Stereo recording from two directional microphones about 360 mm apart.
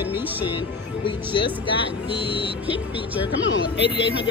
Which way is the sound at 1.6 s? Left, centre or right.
Centre.